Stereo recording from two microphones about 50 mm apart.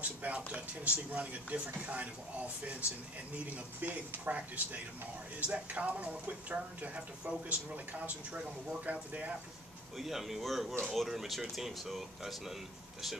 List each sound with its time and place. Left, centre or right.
0.0 s a sound: right
0.5 s speech: right
3.4 s speech: right
9.9 s speech: centre